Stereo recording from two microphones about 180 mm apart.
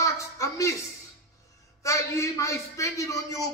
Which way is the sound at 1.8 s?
15° left (ahead or behind).